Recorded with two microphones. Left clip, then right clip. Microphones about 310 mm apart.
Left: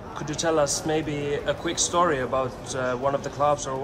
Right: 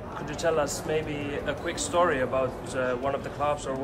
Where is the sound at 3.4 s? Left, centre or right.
Centre.